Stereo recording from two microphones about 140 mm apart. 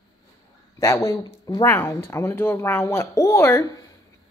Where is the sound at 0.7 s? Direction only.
20° left (ahead or behind).